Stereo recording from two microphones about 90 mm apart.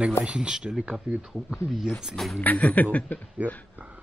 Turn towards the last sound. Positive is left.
turn(degrees=-15)  # may be behind; listen again after turning